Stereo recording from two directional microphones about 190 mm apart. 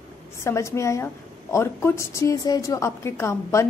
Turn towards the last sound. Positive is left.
turn(degrees=15)  # may be behind; listen again after turning